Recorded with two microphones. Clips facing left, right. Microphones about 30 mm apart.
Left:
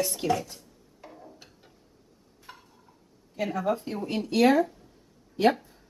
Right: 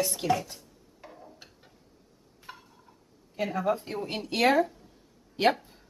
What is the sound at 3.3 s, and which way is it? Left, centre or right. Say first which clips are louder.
Speech: even; centre.